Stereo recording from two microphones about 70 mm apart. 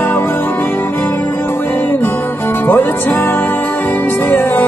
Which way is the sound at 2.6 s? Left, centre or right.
Left.